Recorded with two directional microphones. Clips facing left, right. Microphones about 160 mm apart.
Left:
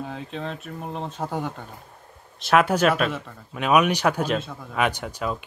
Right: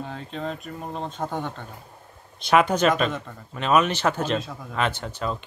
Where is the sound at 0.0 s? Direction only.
5° left (ahead or behind).